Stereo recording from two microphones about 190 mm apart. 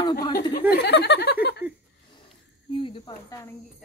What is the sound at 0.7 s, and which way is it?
Speech, 60° left (ahead or behind).